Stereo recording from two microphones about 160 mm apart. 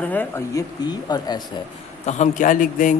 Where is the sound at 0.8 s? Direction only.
25° left (ahead or behind).